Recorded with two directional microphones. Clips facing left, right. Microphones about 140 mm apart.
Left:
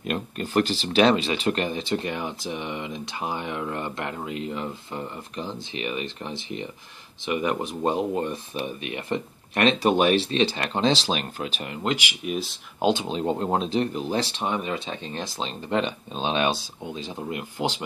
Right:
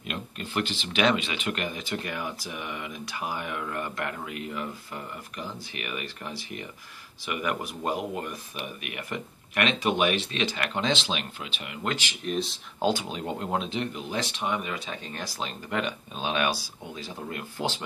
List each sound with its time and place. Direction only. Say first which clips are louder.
0.0 s speech: left 7 dB; 45° left (ahead or behind)
11.8 s speech: left 4 dB; 15° left (ahead or behind)
12.8 s speech: left 4 dB; 25° left (ahead or behind)